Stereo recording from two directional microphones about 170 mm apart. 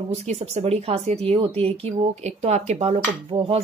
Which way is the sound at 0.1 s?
40° right (ahead or behind).